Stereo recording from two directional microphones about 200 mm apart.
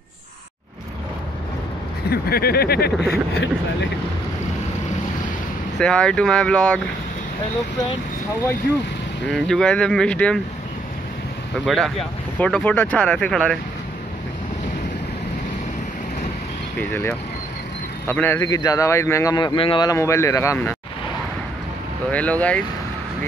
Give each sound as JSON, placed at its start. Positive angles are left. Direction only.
{"t": 2.0, "sound": "speech", "side_deg": 50}
{"t": 5.8, "sound": "speech", "side_deg": 5}
{"t": 9.3, "sound": "speech", "side_deg": 5}
{"t": 11.6, "sound": "speech", "side_deg": 0}
{"t": 18.0, "sound": "speech", "side_deg": 10}
{"t": 22.1, "sound": "speech", "side_deg": 5}